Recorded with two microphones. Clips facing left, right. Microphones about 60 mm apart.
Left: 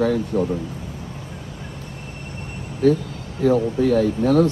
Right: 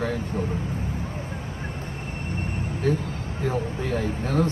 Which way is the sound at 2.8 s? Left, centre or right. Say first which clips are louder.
Left 8 dB; right.